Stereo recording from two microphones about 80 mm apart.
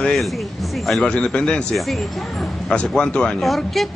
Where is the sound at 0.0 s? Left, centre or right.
Centre.